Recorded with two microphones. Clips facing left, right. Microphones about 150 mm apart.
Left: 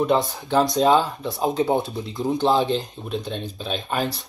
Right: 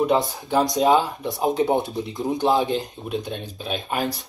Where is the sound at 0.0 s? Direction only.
10° right (ahead or behind).